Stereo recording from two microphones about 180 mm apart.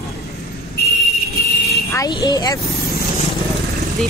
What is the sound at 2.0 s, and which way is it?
Speech, 20° left (ahead or behind).